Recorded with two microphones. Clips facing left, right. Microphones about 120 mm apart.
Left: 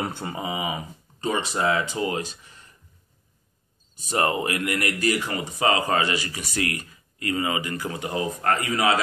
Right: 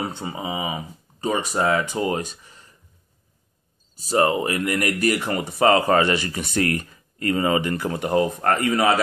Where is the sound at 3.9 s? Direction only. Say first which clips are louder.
Right 4 dB; 35° right (ahead or behind).